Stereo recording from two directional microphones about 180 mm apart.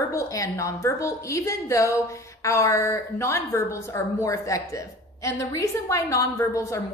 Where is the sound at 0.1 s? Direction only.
15° left (ahead or behind).